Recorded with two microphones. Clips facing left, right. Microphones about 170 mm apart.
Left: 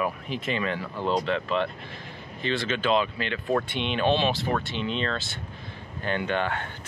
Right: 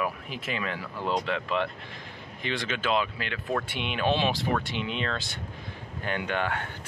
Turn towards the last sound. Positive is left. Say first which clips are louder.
# left 2 dB
turn(degrees=-10)  # may be behind; listen again after turning